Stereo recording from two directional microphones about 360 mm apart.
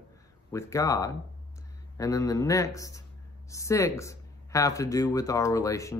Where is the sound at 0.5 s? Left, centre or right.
Centre.